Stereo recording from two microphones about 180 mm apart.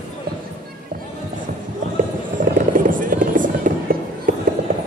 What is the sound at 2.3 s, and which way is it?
Music, 50° right (ahead or behind).